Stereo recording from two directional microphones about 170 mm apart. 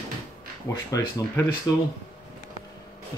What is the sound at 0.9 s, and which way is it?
Speech, 20° left (ahead or behind).